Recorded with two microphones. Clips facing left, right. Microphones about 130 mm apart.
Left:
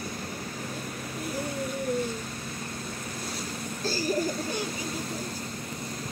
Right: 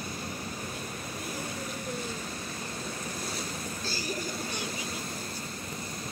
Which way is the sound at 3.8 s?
45° left (ahead or behind).